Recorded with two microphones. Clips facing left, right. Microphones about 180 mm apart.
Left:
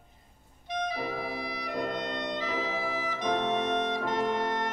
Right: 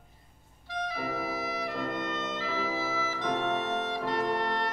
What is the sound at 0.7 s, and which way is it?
Clarinet, 20° left (ahead or behind).